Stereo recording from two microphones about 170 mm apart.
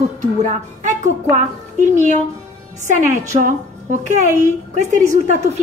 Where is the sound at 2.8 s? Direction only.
45° right (ahead or behind).